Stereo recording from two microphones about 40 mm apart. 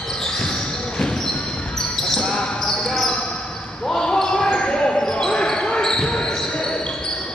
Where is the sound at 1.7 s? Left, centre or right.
Centre.